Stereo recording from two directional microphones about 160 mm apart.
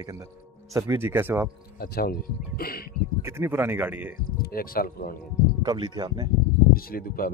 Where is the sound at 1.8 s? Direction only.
70° left (ahead or behind).